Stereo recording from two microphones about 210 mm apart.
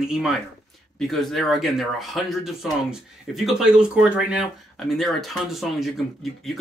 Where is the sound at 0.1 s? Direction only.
Centre (ahead or behind).